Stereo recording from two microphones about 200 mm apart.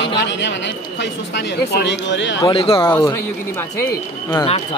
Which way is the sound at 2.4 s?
25° left (ahead or behind).